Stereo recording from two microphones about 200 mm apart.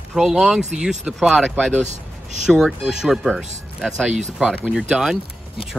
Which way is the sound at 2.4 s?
Centre (ahead or behind).